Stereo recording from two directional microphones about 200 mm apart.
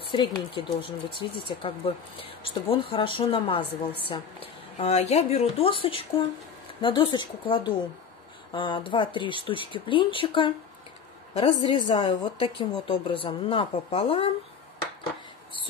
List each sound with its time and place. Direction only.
0.1 s speech: 25° left (ahead or behind)